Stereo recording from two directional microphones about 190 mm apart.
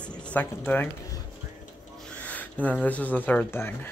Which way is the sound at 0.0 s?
5° left (ahead or behind).